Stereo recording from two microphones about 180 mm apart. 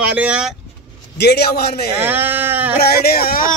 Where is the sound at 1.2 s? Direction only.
65° left (ahead or behind).